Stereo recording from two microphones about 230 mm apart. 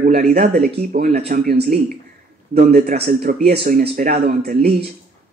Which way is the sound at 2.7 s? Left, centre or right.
Right.